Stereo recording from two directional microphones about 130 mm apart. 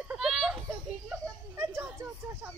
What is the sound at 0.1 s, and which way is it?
Children playing, 5° right (ahead or behind).